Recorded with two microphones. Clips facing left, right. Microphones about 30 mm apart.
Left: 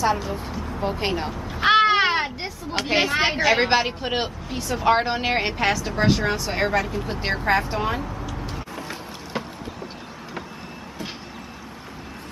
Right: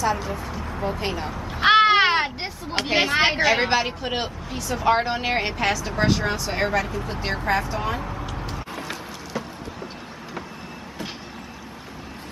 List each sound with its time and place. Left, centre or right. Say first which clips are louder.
0.2 s speech: even; centre
0.6 s speech: left 1 dB; centre
0.8 s speech: left 2 dB; left
1.6 s children playing: right 1 dB; centre
2.9 s speech: even; centre
3.2 s a woman's voice: right 2 dB; centre
3.4 s speech: left 1 dB; centre
7.4 s speech: left 2 dB; centre